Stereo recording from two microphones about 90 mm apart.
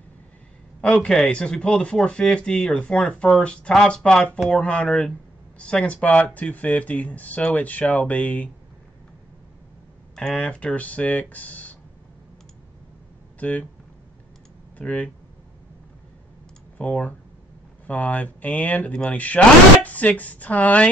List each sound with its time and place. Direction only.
0.7 s speech: 10° left (ahead or behind)
10.1 s speech: 5° left (ahead or behind)
13.4 s speech: 15° left (ahead or behind)
14.8 s speech: 15° left (ahead or behind)
16.7 s speech: 15° left (ahead or behind)